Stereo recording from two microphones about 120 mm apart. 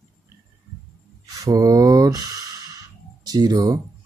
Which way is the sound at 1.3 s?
30° right (ahead or behind).